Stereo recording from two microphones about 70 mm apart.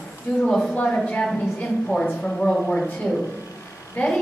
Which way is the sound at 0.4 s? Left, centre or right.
Centre.